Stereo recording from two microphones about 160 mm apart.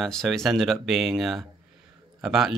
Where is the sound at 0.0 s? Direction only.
Centre (ahead or behind).